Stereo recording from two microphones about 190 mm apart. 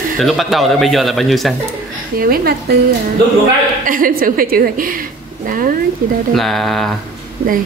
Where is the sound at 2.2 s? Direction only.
55° right (ahead or behind).